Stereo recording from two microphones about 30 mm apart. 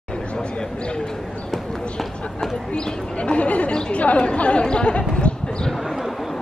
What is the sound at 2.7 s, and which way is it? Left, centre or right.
Speech, left.